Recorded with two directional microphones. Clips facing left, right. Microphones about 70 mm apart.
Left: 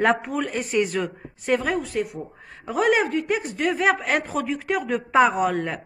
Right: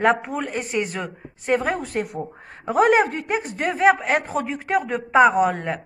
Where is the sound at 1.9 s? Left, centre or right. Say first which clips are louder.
Right 1 dB; right.